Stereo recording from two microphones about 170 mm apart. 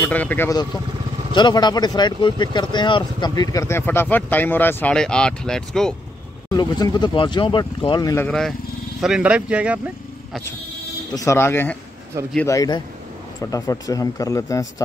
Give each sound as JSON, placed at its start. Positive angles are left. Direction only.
{"t": 0.0, "sound": "speech", "side_deg": 10}
{"t": 1.3, "sound": "speech", "side_deg": 25}
{"t": 6.5, "sound": "speech", "side_deg": 25}
{"t": 8.3, "sound": "speech", "side_deg": 5}
{"t": 11.1, "sound": "speech", "side_deg": 15}
{"t": 12.4, "sound": "speech", "side_deg": 20}